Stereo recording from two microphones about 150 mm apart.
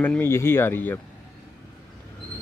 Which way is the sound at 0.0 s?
15° left (ahead or behind).